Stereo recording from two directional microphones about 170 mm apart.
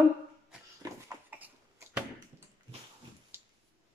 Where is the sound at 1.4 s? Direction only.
10° right (ahead or behind).